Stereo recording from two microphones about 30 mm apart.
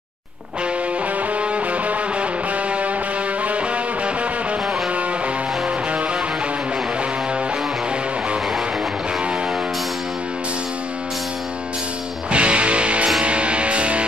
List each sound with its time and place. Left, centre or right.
1.4 s music: right
3.4 s music: right
12.3 s music: right